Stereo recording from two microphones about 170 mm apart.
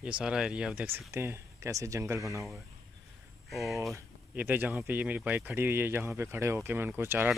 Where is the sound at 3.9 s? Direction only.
10° right (ahead or behind).